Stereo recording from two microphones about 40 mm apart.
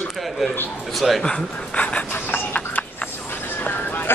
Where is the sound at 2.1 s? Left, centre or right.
Left.